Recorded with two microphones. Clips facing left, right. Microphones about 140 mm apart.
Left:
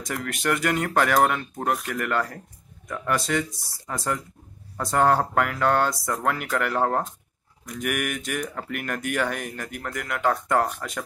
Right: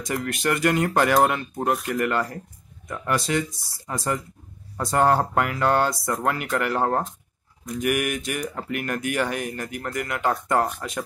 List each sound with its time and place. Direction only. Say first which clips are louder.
0.1 s speech: right 2 dB; centre (ahead or behind)